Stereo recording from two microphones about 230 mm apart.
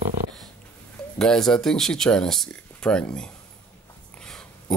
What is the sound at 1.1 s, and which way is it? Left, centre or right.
Speech, centre.